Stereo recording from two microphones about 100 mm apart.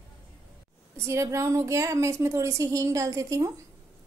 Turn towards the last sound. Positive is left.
turn(degrees=-35)  # may be behind; listen again after turning